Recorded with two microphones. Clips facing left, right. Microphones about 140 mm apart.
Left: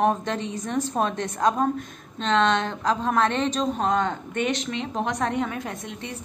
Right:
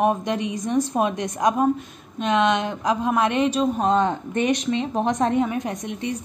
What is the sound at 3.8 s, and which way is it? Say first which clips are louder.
A woman's voice: right 4 dB; 25° right (ahead or behind).